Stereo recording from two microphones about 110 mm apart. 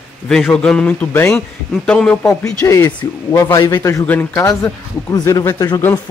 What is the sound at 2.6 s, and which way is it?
A man's voice, 30° left (ahead or behind).